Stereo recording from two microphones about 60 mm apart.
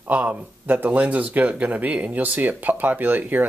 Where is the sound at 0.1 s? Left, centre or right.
Right.